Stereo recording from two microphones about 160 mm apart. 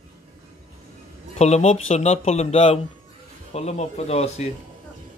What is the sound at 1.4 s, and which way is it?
Speech, 45° left (ahead or behind).